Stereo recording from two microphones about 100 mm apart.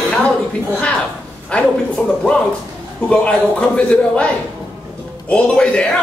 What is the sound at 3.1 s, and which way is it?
Speech, 10° left (ahead or behind).